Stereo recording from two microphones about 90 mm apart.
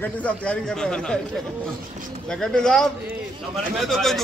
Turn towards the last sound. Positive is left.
turn(degrees=0)  # may be behind; listen again after turning